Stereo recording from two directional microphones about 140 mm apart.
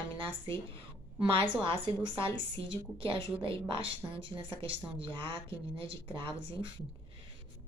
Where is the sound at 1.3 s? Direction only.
40° right (ahead or behind).